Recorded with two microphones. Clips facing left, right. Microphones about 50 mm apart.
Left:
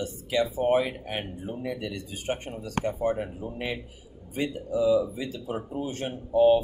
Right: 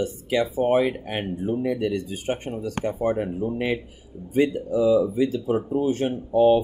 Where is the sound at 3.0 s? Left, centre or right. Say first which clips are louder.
Right 4 dB; right.